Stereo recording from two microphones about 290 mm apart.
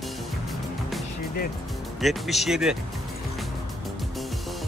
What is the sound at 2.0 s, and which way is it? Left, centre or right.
Speech, centre.